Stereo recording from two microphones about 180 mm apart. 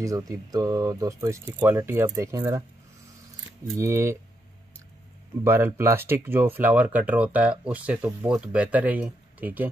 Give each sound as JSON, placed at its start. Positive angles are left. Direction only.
{"t": 0.0, "sound": "speech", "side_deg": -20}
{"t": 3.6, "sound": "speech", "side_deg": -15}
{"t": 5.4, "sound": "speech", "side_deg": -15}